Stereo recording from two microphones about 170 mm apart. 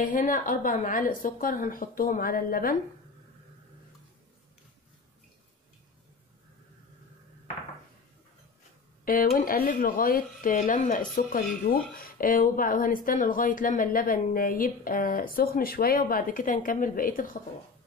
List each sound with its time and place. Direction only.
0.0 s speech: 50° left (ahead or behind)
9.0 s speech: 55° left (ahead or behind)